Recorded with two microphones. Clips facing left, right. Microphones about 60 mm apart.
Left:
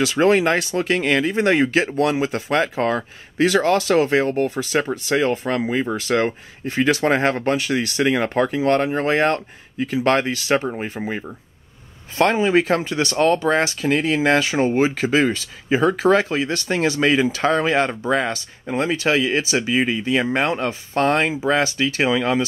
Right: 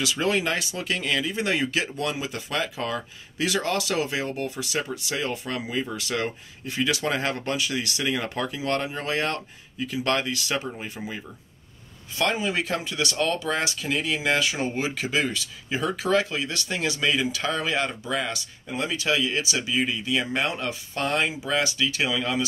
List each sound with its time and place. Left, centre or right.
0.0 s speech: left